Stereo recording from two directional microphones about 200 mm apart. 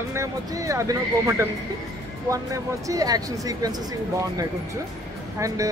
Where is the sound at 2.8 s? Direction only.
20° right (ahead or behind).